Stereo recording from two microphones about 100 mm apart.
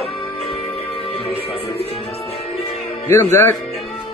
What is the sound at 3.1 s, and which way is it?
Speech, 25° left (ahead or behind).